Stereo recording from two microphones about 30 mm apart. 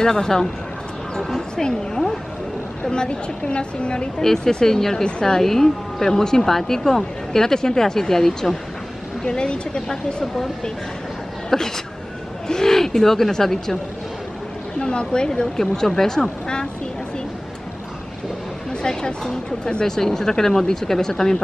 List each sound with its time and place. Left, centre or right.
0.0 s speech: left
2.8 s a woman's voice: left
4.2 s speech: centre
9.2 s speech: left
11.5 s speech: centre
14.8 s a woman's voice: left
15.5 s speech: centre
18.7 s a woman's voice: left